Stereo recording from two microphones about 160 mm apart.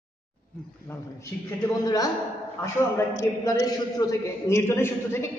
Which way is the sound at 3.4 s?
25° left (ahead or behind).